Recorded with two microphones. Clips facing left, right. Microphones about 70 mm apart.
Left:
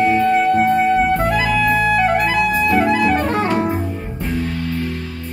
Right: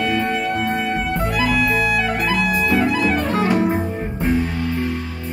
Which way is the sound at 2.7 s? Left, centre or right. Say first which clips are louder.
Left 3 dB; left.